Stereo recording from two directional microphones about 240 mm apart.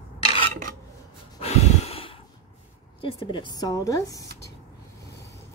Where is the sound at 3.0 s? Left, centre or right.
Centre.